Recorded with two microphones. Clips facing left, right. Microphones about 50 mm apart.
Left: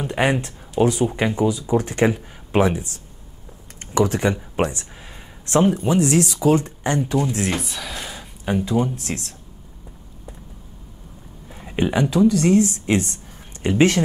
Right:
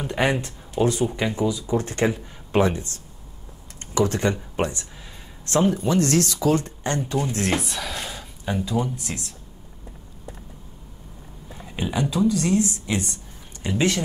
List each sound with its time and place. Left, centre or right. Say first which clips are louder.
0.0 s a sound: left 2 dB; centre
0.3 s speech: left 3 dB; left
0.8 s speech: left 3 dB; centre
7.3 s speech: even; centre
8.2 s a sound: left 7 dB; centre
8.6 s speech: left 4 dB; left
8.9 s speech: left 4 dB; left
11.6 s speech: left 5 dB; left
12.8 s a sound: left 6 dB; left
13.7 s speech: left 6 dB; left